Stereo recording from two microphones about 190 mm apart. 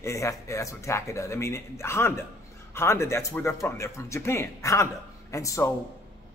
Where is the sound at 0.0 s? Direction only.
15° left (ahead or behind).